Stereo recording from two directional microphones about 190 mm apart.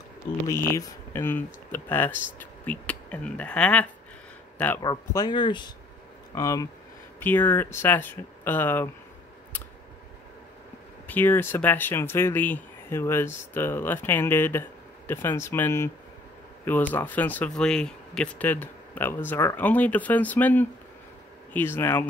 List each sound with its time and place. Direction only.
0.5 s speech: 15° left (ahead or behind)
4.8 s speech: 20° left (ahead or behind)
11.1 s speech: 10° left (ahead or behind)